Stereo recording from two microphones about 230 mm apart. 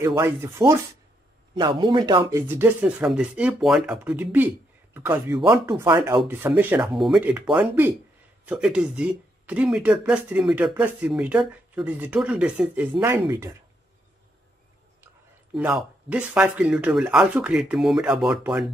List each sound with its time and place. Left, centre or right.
0.0 s speech: centre
12.9 s speech: centre
15.5 s speech: centre